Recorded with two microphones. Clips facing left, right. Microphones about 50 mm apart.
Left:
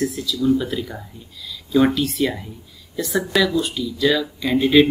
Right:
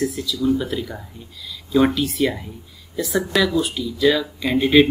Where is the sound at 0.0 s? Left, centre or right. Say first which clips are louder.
Left 1 dB; centre.